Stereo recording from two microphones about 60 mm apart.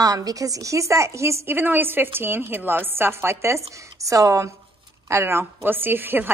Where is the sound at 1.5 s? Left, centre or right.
Right.